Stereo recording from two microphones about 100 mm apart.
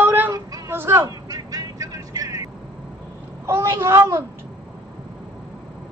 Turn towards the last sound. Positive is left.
turn(degrees=-30)  # may be behind; listen again after turning